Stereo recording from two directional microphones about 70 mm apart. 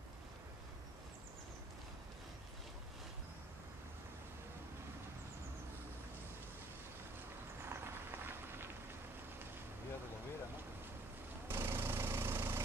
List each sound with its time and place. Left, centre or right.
7.7 s vehicle: right
11.4 s engine: right